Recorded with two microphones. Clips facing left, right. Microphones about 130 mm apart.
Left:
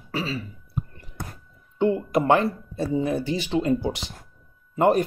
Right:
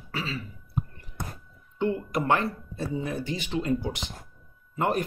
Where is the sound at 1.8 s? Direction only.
25° left (ahead or behind).